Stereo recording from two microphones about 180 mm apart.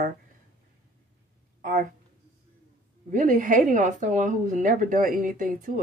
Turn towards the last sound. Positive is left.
turn(degrees=-50)  # may be behind; listen again after turning